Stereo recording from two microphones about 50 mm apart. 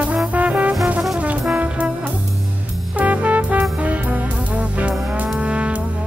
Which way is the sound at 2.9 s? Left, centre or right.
Right.